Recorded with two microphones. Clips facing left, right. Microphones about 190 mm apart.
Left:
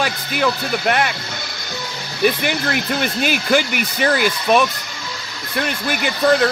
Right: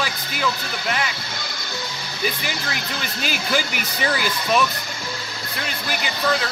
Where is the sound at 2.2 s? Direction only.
55° left (ahead or behind).